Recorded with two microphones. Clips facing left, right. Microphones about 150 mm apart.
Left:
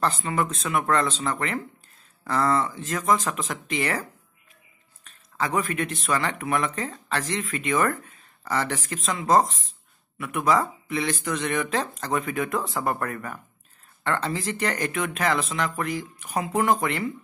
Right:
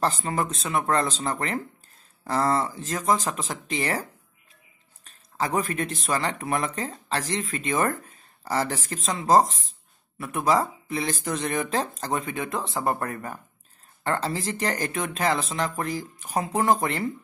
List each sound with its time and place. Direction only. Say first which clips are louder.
0.0 s speech: even; 35° right (ahead or behind)
5.0 s speech: even; 35° right (ahead or behind)